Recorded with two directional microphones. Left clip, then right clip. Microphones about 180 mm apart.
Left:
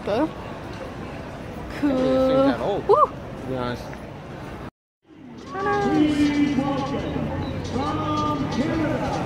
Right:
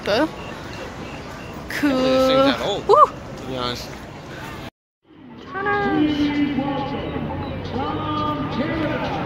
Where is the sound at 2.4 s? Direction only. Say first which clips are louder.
Right 2 dB; 35° left (ahead or behind).